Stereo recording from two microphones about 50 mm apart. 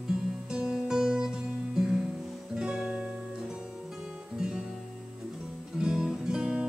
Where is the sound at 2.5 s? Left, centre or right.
Centre.